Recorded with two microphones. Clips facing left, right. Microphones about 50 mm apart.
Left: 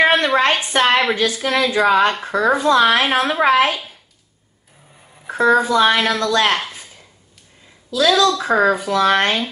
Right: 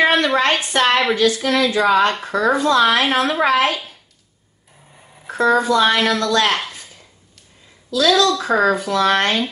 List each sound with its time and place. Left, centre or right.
0.4 s a woman's voice: centre
5.2 s a woman's voice: centre
7.9 s a woman's voice: centre